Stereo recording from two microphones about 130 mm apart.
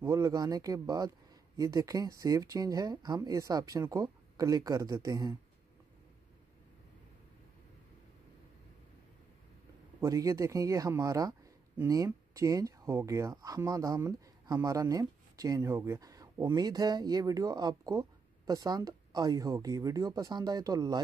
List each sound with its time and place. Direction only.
0.0 s speech: 25° right (ahead or behind)
9.9 s speech: 25° right (ahead or behind)